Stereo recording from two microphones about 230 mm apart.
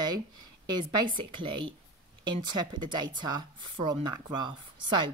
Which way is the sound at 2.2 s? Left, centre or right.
Centre.